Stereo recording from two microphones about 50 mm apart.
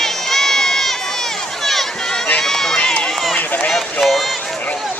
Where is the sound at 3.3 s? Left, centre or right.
Left.